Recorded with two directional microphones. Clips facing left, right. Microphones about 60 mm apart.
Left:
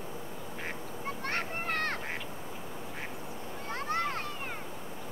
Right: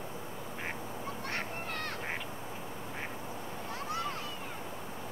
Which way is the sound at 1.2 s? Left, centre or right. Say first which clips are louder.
Left 5 dB; left.